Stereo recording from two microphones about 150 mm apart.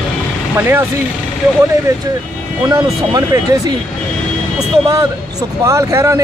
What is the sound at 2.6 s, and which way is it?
Speech, 25° right (ahead or behind).